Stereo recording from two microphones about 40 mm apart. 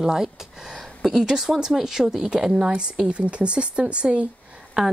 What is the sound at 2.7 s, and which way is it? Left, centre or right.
Speech, right.